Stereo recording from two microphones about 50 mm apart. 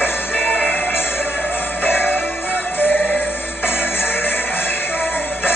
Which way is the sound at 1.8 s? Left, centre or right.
Left.